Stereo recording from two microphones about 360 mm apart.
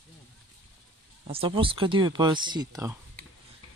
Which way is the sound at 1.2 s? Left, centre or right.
Centre.